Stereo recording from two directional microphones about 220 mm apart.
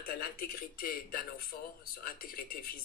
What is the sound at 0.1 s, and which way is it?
A man's voice, 40° left (ahead or behind).